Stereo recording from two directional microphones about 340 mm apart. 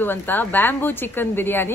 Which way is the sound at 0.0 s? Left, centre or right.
Centre.